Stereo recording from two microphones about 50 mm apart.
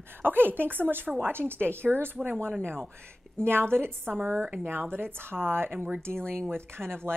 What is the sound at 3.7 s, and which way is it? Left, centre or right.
Speech, right.